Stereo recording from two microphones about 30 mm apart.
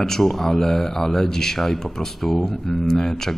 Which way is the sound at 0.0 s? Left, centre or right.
Centre.